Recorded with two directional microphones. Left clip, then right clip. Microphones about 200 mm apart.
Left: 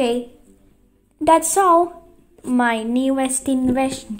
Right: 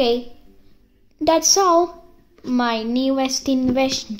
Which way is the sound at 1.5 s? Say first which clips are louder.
Left 1 dB; 15° right (ahead or behind).